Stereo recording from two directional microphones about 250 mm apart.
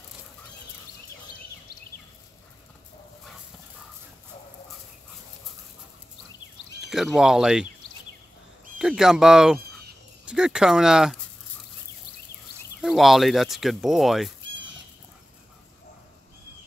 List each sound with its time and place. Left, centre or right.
6.9 s speech: centre
8.7 s speech: centre
12.8 s speech: centre
14.4 s a sound: right